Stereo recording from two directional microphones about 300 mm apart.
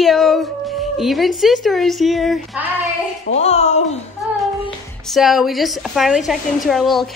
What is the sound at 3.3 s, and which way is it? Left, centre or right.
Speech, left.